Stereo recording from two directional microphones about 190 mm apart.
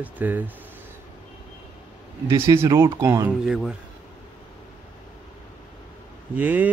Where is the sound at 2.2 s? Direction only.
15° right (ahead or behind).